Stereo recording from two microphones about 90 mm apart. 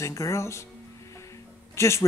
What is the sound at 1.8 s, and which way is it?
Speech, 30° left (ahead or behind).